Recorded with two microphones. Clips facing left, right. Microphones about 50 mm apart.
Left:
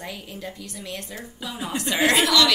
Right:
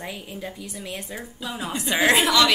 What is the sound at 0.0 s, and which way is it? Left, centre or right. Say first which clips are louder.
A woman's voice: right 1 dB; centre.